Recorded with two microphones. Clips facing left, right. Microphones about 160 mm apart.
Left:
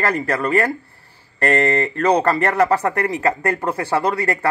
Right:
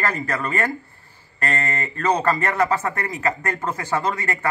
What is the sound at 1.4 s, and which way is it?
Speech, 65° left (ahead or behind).